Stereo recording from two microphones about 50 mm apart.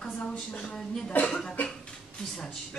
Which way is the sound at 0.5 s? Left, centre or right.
Centre.